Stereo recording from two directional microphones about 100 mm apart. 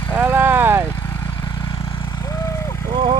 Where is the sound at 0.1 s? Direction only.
20° right (ahead or behind).